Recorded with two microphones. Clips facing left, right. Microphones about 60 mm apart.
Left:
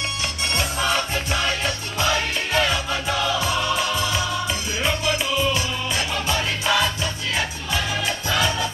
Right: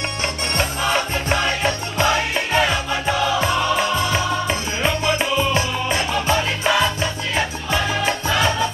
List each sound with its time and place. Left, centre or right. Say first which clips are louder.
0.7 s music: right 2 dB; right